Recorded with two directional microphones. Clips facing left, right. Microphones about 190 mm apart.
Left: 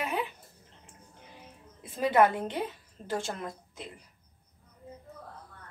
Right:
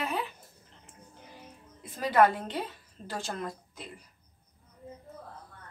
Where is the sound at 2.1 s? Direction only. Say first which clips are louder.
Right 1 dB; 25° left (ahead or behind).